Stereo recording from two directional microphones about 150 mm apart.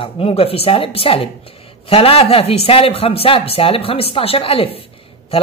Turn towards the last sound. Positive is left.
turn(degrees=40)  # may be behind; listen again after turning